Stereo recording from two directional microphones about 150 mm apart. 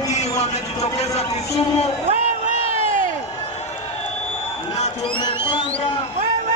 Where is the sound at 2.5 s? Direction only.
40° left (ahead or behind).